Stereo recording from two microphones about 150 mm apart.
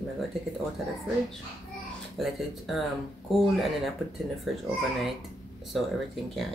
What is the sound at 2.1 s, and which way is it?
Speech, centre (ahead or behind).